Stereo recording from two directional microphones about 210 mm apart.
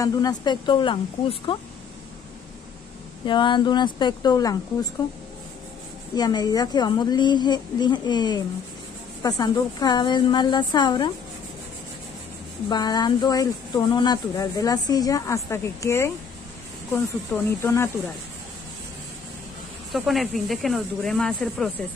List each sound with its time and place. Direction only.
0.0 s a woman's voice: 20° left (ahead or behind)
3.3 s a woman's voice: 20° left (ahead or behind)
6.1 s a woman's voice: 20° left (ahead or behind)
12.6 s speech: 20° left (ahead or behind)
19.9 s speech: centre (ahead or behind)